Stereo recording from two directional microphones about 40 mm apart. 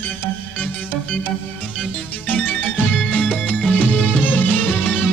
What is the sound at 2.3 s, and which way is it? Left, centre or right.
Music, left.